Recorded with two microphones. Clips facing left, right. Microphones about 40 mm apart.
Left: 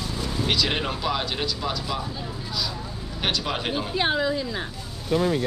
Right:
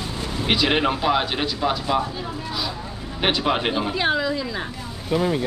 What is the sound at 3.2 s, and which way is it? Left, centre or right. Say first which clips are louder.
Speech: right 6 dB; right.